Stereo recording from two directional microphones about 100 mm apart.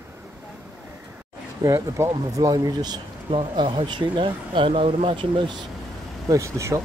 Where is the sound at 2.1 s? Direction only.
40° right (ahead or behind).